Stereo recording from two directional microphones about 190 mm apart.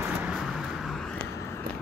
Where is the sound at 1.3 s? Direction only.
15° left (ahead or behind).